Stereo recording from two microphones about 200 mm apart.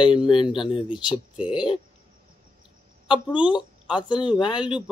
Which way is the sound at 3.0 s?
25° left (ahead or behind).